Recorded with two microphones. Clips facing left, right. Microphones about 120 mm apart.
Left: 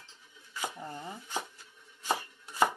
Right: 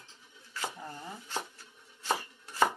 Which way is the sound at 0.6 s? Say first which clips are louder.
Even; 15° left (ahead or behind).